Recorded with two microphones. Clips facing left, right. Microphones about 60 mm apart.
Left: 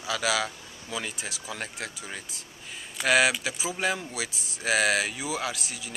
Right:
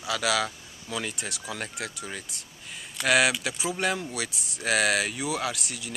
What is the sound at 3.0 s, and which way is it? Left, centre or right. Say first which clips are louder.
Speech: even; centre.